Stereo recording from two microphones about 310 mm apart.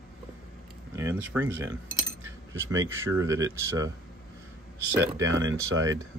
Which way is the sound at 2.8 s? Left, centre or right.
Centre.